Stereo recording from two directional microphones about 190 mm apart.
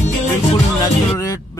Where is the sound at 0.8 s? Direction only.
15° left (ahead or behind).